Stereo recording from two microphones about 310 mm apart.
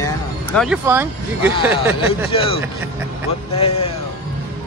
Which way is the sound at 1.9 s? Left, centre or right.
Centre.